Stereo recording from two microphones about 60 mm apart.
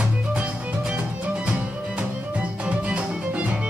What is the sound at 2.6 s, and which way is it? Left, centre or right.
Music, right.